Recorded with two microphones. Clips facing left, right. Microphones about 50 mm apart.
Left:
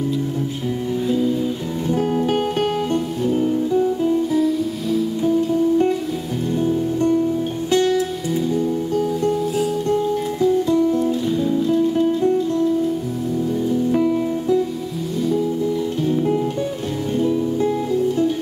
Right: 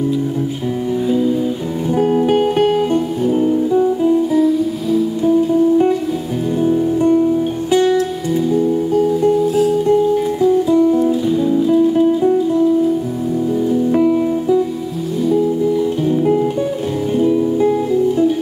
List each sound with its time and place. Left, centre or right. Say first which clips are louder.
1.0 s music: right 3 dB; centre
6.7 s music: right 6 dB; centre
13.7 s music: right 4 dB; centre
16.0 s music: right 2 dB; centre